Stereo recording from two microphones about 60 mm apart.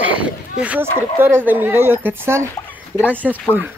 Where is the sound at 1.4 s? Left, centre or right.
Right.